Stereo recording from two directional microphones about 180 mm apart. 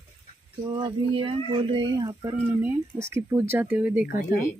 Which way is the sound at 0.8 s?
30° right (ahead or behind).